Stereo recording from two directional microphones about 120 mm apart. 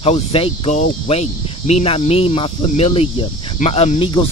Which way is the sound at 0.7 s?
75° left (ahead or behind).